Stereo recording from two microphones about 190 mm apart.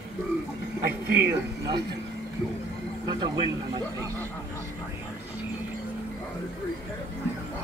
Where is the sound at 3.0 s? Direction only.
25° right (ahead or behind).